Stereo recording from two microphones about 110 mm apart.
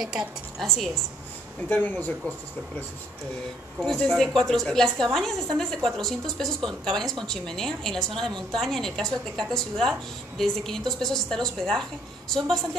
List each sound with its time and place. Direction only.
0.0 s a woman's voice: 5° right (ahead or behind)
1.7 s speech: 15° left (ahead or behind)
3.8 s a woman's voice: 5° left (ahead or behind)